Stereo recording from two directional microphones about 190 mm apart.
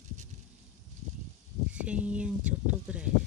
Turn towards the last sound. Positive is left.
turn(degrees=-5)  # may be behind; listen again after turning